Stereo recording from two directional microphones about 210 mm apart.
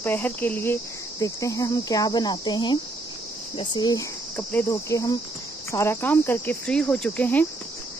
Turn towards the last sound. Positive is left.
turn(degrees=5)  # may be behind; listen again after turning